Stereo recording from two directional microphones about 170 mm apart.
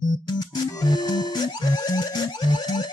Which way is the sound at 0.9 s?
25° left (ahead or behind).